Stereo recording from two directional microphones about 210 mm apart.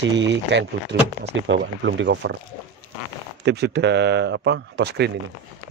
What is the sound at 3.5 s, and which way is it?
Speech, 55° right (ahead or behind).